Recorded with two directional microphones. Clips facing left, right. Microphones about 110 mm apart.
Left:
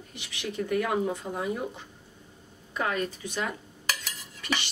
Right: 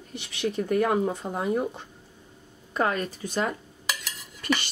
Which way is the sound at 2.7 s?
40° right (ahead or behind).